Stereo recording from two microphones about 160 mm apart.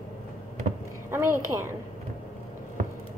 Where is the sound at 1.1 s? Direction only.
15° right (ahead or behind).